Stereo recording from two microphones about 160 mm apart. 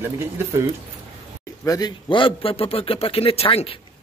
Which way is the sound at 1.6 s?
25° left (ahead or behind).